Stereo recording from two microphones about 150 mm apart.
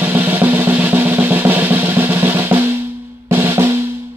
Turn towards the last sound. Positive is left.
turn(degrees=-15)  # may be behind; listen again after turning